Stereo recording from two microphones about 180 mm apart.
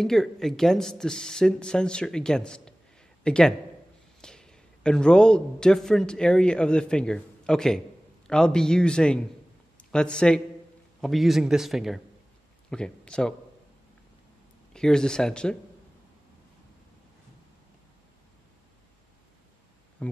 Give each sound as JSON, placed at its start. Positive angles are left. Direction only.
{"t": 0.0, "sound": "a man's voice", "side_deg": 0}
{"t": 14.7, "sound": "speech", "side_deg": 5}
{"t": 20.0, "sound": "a sound", "side_deg": 5}